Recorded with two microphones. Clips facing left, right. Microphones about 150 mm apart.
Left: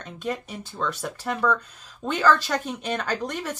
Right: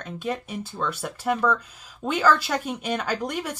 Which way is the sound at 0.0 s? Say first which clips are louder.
Right 1 dB; 5° right (ahead or behind).